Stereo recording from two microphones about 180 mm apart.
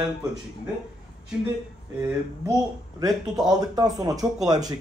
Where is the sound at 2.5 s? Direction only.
20° right (ahead or behind).